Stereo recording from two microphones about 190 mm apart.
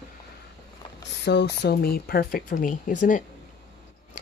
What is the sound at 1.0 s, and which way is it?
Speech, 65° left (ahead or behind).